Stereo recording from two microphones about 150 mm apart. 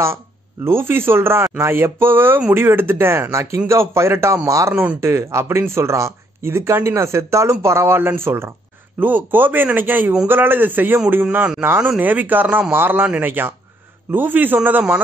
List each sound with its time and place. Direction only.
0.7 s speech: 15° right (ahead or behind)